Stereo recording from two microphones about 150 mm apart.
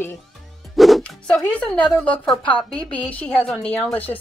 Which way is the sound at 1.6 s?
5° left (ahead or behind).